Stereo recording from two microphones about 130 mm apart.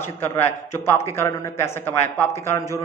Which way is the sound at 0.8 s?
20° left (ahead or behind).